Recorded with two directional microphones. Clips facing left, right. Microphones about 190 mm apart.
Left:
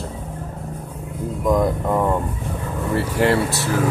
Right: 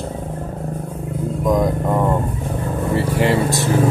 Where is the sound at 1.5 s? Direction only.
15° right (ahead or behind).